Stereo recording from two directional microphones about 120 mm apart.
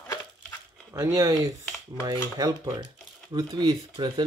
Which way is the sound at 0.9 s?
25° right (ahead or behind).